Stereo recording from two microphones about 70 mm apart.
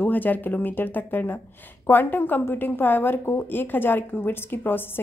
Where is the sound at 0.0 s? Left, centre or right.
Left.